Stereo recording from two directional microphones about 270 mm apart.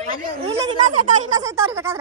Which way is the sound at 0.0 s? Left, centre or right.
Right.